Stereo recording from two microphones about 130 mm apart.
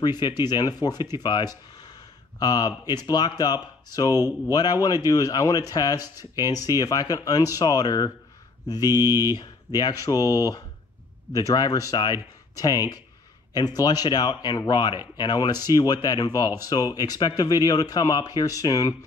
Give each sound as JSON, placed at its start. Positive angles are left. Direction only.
{"t": 0.0, "sound": "a man's voice", "side_deg": 35}
{"t": 8.6, "sound": "mantra", "side_deg": 30}
{"t": 8.9, "sound": "speech", "side_deg": -20}
{"t": 9.8, "sound": "a man's voice", "side_deg": 30}